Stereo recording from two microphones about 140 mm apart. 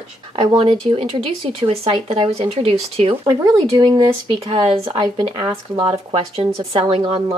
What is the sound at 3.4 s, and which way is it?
Speech, 30° right (ahead or behind).